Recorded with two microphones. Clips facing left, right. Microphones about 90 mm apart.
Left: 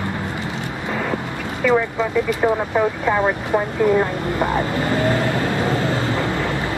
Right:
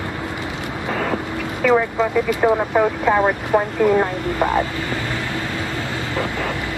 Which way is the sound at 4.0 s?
20° right (ahead or behind).